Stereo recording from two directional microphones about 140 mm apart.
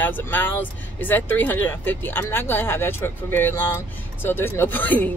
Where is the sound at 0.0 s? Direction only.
15° left (ahead or behind).